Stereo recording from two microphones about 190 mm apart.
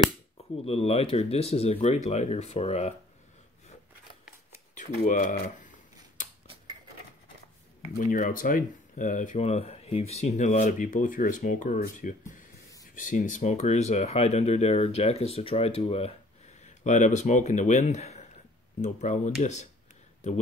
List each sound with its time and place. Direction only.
0.7 s speech: 30° left (ahead or behind)
4.7 s speech: 40° left (ahead or behind)
6.4 s a sound: 30° right (ahead or behind)
8.0 s speech: 45° left (ahead or behind)